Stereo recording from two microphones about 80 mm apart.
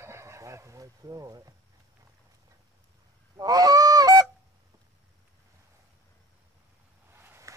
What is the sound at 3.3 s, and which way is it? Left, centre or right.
Goose, right.